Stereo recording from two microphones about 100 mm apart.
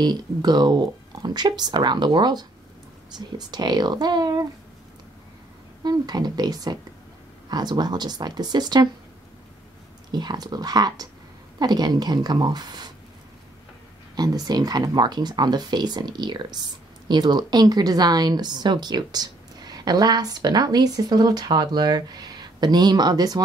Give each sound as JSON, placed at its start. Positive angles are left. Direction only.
{"t": 0.0, "sound": "speech", "side_deg": -45}
{"t": 5.9, "sound": "speech", "side_deg": -45}
{"t": 10.1, "sound": "speech", "side_deg": -45}
{"t": 14.1, "sound": "speech", "side_deg": -40}